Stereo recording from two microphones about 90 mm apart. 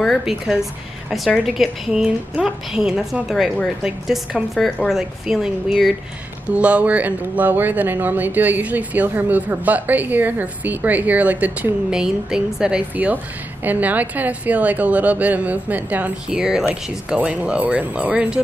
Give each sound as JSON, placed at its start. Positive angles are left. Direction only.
{"t": 0.2, "sound": "a woman's voice", "side_deg": -5}
{"t": 6.4, "sound": "a woman's voice", "side_deg": -15}